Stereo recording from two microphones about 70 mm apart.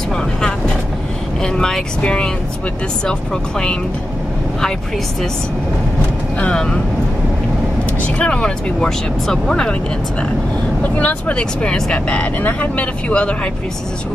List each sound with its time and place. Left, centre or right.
1.4 s speech: centre
6.4 s speech: centre
8.2 s speech: centre
10.8 s speech: left